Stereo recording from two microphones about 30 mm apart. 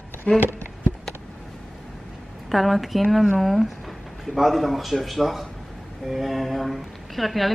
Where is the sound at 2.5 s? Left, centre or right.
Centre.